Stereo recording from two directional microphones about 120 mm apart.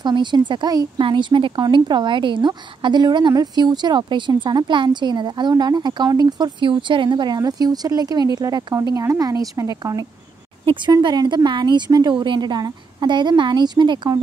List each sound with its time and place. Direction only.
0.0 s a woman's voice: 40° right (ahead or behind)